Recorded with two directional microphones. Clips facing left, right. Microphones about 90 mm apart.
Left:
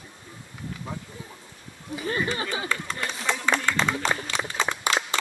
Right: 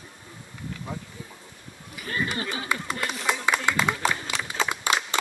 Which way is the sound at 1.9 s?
25° left (ahead or behind).